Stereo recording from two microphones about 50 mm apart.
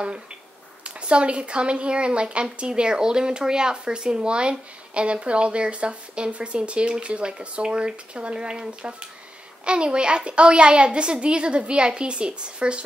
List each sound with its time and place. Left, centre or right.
0.8 s a woman's voice: right